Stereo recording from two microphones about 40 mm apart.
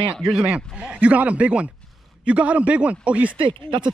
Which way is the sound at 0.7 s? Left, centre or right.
Right.